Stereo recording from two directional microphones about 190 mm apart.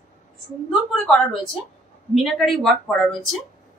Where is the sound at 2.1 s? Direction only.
Centre (ahead or behind).